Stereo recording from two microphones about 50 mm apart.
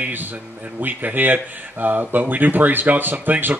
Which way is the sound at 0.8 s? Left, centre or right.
Right.